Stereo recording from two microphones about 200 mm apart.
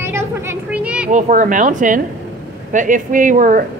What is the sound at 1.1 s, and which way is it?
Speech, 40° right (ahead or behind).